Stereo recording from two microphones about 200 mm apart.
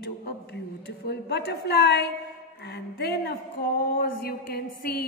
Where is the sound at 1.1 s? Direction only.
55° left (ahead or behind).